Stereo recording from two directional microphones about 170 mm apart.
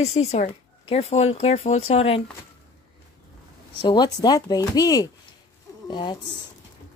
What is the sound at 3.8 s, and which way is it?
Speech, 25° left (ahead or behind).